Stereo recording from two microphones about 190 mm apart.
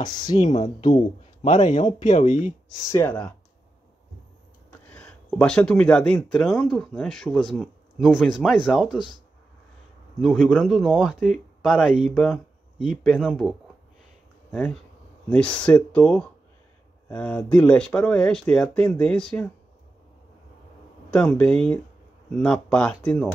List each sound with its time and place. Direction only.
0.0 s speech: 20° left (ahead or behind)
0.5 s speech: 35° left (ahead or behind)
2.9 s speech: 10° left (ahead or behind)
4.8 s speech: 5° left (ahead or behind)
10.2 s speech: centre (ahead or behind)
21.1 s speech: 5° left (ahead or behind)